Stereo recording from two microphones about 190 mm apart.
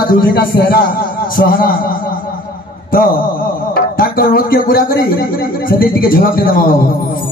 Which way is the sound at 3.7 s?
50° left (ahead or behind).